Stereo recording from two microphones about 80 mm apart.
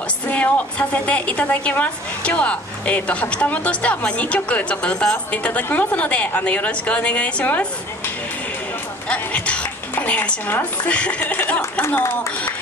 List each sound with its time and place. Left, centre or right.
0.3 s a woman's voice: centre
9.1 s a woman's voice: centre